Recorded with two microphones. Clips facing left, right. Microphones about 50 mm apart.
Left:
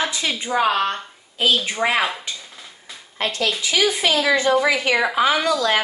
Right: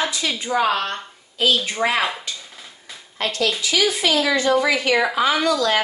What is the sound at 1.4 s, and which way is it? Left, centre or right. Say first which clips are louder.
Speech: even; left.